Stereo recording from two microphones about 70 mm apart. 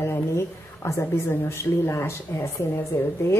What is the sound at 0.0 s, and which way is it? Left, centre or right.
A woman's voice, left.